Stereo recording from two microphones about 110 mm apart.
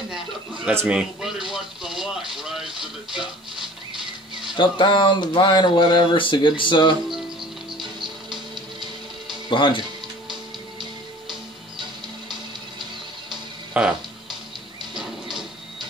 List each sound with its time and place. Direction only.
0.8 s speech: 10° right (ahead or behind)
1.5 s television: 5° right (ahead or behind)
4.6 s speech: 50° left (ahead or behind)
9.5 s speech: 50° left (ahead or behind)
13.7 s speech: 10° right (ahead or behind)